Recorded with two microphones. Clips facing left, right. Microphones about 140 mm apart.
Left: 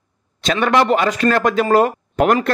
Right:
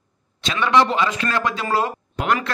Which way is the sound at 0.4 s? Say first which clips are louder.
Left 2 dB; 45° left (ahead or behind).